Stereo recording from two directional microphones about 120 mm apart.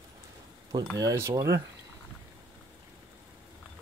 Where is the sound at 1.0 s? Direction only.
25° right (ahead or behind).